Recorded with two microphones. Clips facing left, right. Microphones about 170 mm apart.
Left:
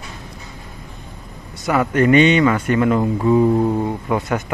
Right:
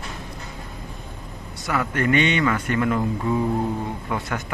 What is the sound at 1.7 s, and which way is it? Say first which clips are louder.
Speech: left 7 dB; 20° left (ahead or behind).